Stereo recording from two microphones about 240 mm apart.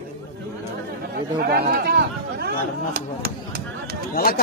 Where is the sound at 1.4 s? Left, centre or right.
Right.